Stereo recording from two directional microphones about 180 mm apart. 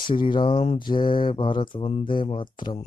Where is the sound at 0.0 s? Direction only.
25° left (ahead or behind).